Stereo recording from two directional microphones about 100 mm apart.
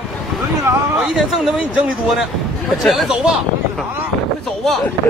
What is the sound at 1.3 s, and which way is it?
Speech, 5° right (ahead or behind).